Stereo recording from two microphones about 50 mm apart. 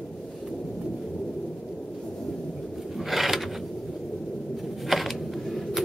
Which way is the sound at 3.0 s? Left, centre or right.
Centre.